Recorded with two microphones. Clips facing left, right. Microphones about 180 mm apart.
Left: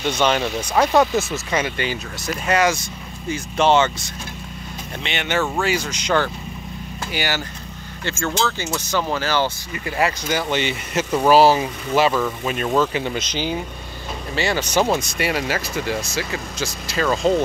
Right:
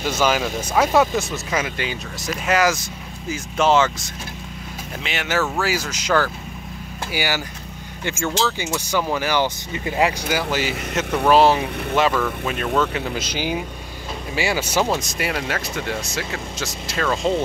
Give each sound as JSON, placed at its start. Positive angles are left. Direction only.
{"t": 0.0, "sound": "speech", "side_deg": -5}
{"t": 8.0, "sound": "vehicle", "side_deg": -15}
{"t": 8.3, "sound": "speech", "side_deg": -10}
{"t": 10.2, "sound": "speech", "side_deg": -5}